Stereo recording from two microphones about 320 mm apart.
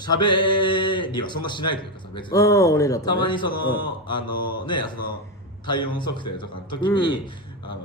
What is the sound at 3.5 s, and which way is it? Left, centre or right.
Speech, left.